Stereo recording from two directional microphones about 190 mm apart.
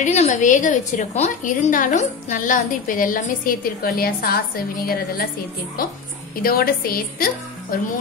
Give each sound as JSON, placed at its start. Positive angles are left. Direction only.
{"t": 0.0, "sound": "a woman's voice", "side_deg": 40}